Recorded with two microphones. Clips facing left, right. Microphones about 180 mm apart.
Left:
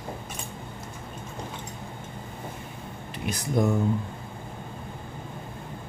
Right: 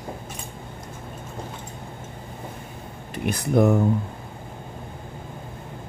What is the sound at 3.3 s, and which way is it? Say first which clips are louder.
Speech: right 6 dB; 60° right (ahead or behind).